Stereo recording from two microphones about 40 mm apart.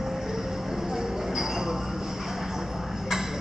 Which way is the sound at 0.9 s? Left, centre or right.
Centre.